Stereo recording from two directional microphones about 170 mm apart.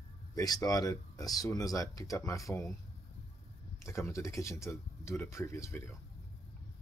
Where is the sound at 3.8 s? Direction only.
15° left (ahead or behind).